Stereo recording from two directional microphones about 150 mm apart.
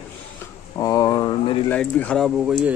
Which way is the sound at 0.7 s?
20° left (ahead or behind).